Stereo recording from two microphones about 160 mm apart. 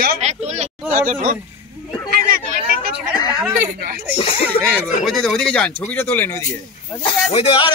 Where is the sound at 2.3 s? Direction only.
70° right (ahead or behind).